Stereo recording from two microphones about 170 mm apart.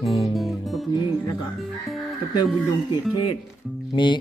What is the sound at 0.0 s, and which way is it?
Music, 35° left (ahead or behind).